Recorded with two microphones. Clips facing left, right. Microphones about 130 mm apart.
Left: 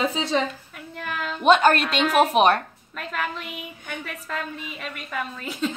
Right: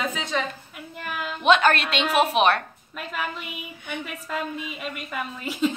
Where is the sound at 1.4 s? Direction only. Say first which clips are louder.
Left 2 dB; 40° left (ahead or behind).